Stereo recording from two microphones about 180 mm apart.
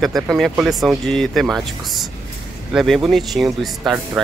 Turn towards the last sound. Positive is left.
turn(degrees=0)  # may be behind; listen again after turning